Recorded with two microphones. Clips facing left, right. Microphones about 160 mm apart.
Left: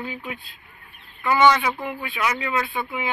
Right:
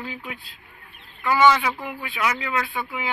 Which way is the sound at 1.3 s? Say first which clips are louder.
Even; 5° right (ahead or behind).